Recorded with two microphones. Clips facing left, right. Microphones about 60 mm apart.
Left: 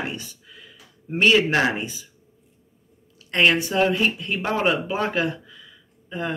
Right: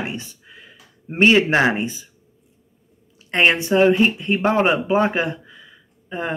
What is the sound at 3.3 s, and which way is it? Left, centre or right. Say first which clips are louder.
Speech: right 2 dB; right.